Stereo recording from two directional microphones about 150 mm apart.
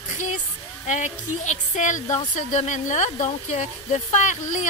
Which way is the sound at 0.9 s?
55° left (ahead or behind).